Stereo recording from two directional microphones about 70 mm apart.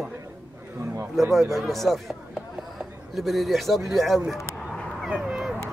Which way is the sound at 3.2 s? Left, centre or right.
Centre.